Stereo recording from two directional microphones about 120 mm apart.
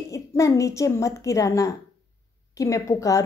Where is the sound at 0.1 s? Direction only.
25° left (ahead or behind).